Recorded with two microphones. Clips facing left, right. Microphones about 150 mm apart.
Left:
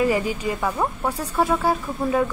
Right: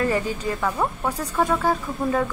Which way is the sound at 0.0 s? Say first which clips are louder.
Left 2 dB; 10° left (ahead or behind).